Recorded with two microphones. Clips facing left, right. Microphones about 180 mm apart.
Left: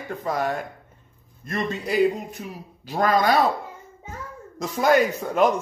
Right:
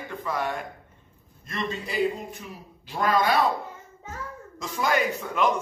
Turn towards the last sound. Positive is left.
turn(degrees=45)  # may be behind; listen again after turning